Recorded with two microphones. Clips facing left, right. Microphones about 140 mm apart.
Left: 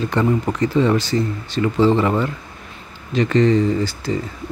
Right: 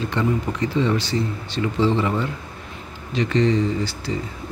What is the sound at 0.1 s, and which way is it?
Speech, 45° left (ahead or behind).